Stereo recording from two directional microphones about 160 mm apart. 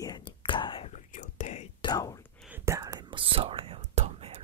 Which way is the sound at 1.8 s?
25° left (ahead or behind).